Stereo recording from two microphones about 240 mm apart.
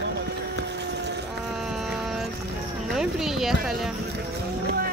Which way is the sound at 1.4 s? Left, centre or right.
Centre.